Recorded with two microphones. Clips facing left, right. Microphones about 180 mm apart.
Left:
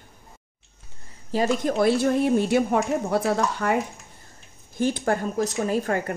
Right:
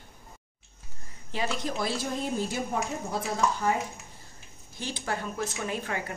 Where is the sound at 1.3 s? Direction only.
45° left (ahead or behind); by 3.8 s 70° left (ahead or behind).